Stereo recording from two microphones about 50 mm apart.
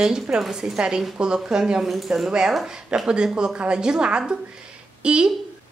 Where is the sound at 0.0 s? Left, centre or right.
Centre.